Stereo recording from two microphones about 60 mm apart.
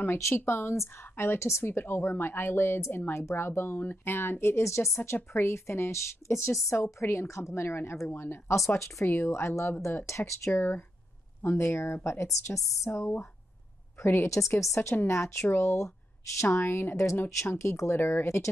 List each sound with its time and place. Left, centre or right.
0.0 s a woman's voice: left
8.5 s a woman's voice: left
10.5 s a woman's voice: left
13.9 s a woman's voice: left
17.2 s a woman's voice: left